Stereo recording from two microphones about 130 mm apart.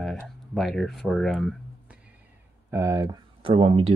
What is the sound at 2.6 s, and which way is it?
Speech, 25° right (ahead or behind).